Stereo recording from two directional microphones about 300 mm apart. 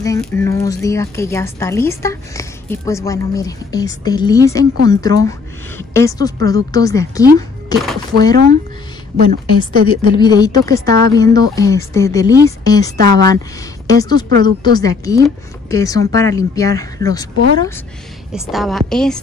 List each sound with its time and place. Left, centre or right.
0.0 s a woman's voice: centre
9.1 s a woman's voice: right
10.1 s a woman's voice: centre
12.9 s a woman's voice: right
13.3 s a woman's voice: centre
18.4 s a woman's voice: centre